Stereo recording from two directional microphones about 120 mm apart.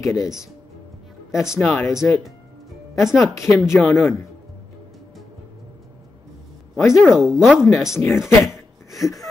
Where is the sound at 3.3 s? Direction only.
25° left (ahead or behind).